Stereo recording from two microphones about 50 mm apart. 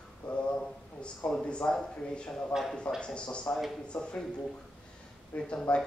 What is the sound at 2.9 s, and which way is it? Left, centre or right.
Speech, centre.